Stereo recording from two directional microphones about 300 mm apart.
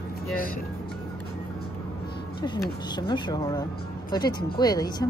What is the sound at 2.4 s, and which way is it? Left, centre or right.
Speech, centre.